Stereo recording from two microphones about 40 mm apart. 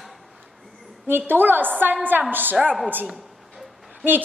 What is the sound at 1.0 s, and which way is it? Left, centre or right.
Speech, right.